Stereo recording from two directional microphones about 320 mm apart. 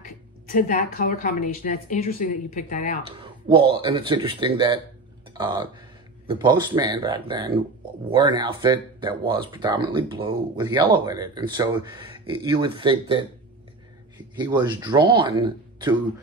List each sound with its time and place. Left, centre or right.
0.0 s a woman's voice: left
3.1 s speech: centre